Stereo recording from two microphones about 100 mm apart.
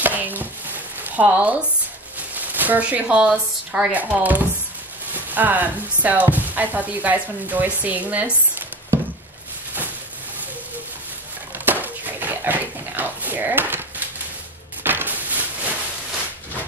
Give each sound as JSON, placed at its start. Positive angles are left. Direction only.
{"t": 0.0, "sound": "chopping", "side_deg": -15}
{"t": 2.1, "sound": "speech", "side_deg": -15}
{"t": 11.5, "sound": "a sound", "side_deg": -20}